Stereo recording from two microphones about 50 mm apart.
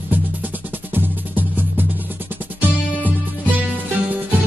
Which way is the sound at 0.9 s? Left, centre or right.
Right.